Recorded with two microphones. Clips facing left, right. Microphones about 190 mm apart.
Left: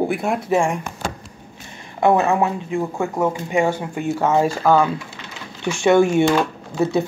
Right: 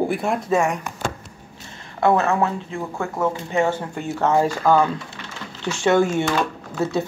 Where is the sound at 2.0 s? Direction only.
15° left (ahead or behind).